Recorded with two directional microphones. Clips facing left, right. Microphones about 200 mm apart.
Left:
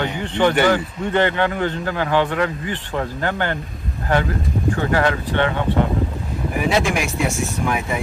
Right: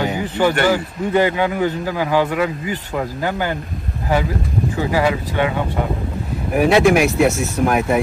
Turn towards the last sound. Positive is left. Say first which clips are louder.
# right 6 dB
turn(degrees=-55)  # may be behind; listen again after turning